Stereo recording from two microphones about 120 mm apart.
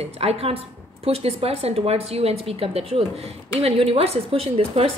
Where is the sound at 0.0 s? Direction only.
60° right (ahead or behind).